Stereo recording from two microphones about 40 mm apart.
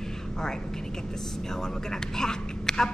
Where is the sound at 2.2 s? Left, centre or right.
Centre.